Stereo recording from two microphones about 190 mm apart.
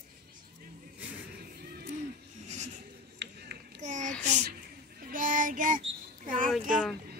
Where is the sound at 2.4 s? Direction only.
35° right (ahead or behind).